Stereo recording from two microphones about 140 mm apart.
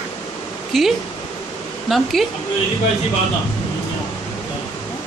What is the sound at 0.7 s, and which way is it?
Speech, centre (ahead or behind).